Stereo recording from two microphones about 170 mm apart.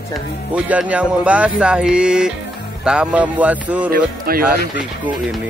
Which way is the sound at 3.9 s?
60° right (ahead or behind).